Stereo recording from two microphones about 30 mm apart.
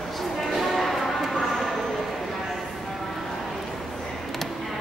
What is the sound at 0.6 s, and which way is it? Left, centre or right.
Music, centre.